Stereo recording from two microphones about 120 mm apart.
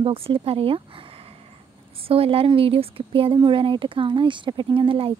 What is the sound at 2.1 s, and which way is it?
Speech, 55° right (ahead or behind).